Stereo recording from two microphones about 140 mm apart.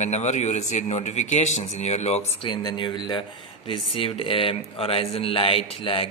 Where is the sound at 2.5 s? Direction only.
30° left (ahead or behind).